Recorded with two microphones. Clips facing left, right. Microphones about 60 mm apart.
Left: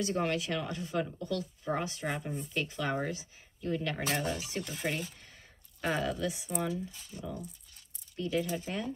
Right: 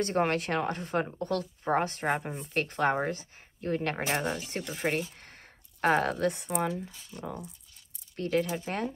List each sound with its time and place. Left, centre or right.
0.0 s speech: right